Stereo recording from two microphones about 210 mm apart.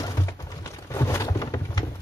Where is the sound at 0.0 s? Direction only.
15° left (ahead or behind).